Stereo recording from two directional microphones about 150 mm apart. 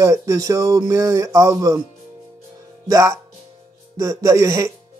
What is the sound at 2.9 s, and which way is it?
Speech, 20° right (ahead or behind).